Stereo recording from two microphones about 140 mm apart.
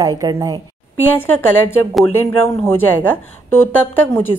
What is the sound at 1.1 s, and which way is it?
A woman's voice, 15° left (ahead or behind).